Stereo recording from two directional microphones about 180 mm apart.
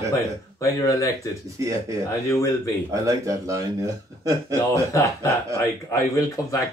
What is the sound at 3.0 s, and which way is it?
Speech, 15° right (ahead or behind).